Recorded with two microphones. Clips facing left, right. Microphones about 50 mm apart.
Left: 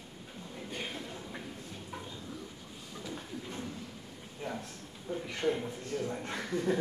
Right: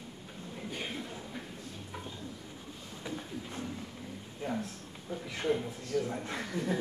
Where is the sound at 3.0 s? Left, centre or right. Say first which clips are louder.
Right 1 dB; right.